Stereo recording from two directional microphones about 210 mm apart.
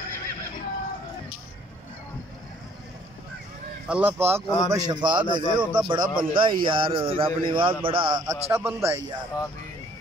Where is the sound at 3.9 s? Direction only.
10° right (ahead or behind).